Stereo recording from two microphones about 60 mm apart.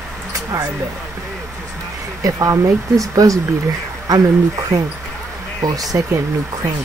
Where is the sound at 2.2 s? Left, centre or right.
Right.